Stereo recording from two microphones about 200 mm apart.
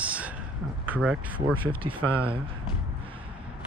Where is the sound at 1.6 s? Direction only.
25° right (ahead or behind).